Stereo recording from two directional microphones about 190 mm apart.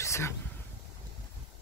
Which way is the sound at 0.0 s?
15° left (ahead or behind).